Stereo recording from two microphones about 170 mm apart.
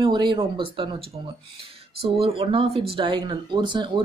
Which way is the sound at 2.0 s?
35° right (ahead or behind).